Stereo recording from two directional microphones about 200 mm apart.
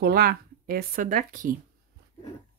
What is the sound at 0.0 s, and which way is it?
Speech, 50° right (ahead or behind).